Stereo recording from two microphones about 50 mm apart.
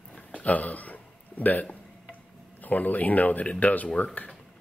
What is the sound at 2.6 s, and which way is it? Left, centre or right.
Speech, left.